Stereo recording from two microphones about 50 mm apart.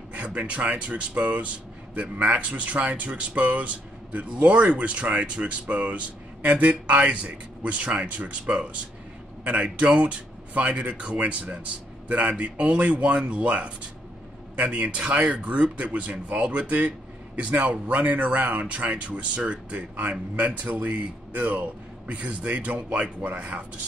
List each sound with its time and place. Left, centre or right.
0.1 s a man's voice: right